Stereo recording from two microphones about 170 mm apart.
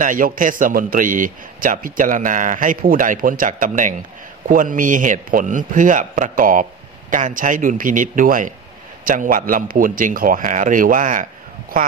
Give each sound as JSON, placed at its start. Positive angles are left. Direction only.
{"t": 0.0, "sound": "a man's voice", "side_deg": -50}